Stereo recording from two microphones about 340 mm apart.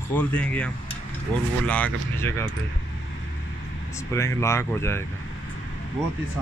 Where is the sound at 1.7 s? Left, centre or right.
Centre.